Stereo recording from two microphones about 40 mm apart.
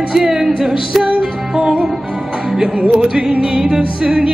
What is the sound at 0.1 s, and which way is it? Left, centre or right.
Music, centre.